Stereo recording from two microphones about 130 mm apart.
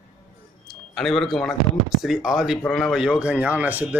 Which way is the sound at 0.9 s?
5° left (ahead or behind).